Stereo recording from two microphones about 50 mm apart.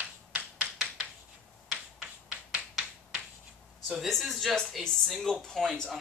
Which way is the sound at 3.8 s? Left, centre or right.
Centre.